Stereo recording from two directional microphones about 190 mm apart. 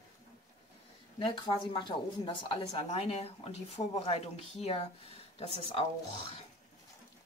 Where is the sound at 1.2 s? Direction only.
25° left (ahead or behind).